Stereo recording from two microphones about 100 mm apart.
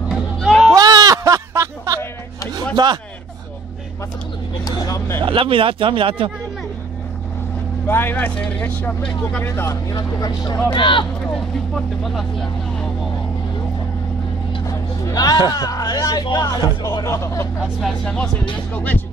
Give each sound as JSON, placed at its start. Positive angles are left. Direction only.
{"t": 0.1, "sound": "a sound", "side_deg": 0}
{"t": 0.7, "sound": "a sound", "side_deg": -40}
{"t": 2.5, "sound": "a sound", "side_deg": -45}
{"t": 4.6, "sound": "speech", "side_deg": 35}
{"t": 5.2, "sound": "speech", "side_deg": -60}
{"t": 7.8, "sound": "speech", "side_deg": 20}
{"t": 9.7, "sound": "speech", "side_deg": 40}
{"t": 10.7, "sound": "speech", "side_deg": 55}
{"t": 11.3, "sound": "speech", "side_deg": 5}
{"t": 14.7, "sound": "vehicle", "side_deg": 35}
{"t": 15.5, "sound": "speech", "side_deg": 35}
{"t": 17.6, "sound": "speech", "side_deg": 0}
{"t": 18.0, "sound": "speech", "side_deg": 10}